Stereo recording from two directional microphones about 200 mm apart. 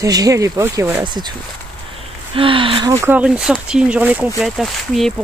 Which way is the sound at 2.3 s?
25° right (ahead or behind).